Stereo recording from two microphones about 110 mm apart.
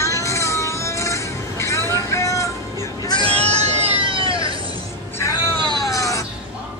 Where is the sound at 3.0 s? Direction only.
45° left (ahead or behind).